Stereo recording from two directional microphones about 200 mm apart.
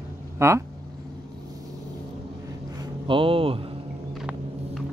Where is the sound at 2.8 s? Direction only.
25° right (ahead or behind).